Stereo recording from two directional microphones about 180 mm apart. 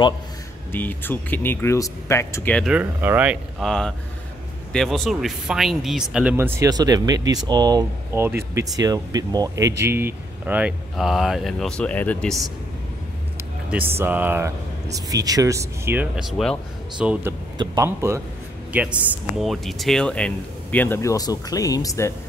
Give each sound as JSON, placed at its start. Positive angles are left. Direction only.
{"t": 0.7, "sound": "speech", "side_deg": 10}
{"t": 2.6, "sound": "speech", "side_deg": -5}
{"t": 13.7, "sound": "speech", "side_deg": -10}